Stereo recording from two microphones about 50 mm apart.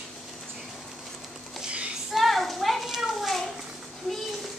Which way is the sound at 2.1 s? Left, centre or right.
Centre.